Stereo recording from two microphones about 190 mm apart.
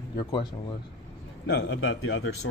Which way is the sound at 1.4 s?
65° left (ahead or behind).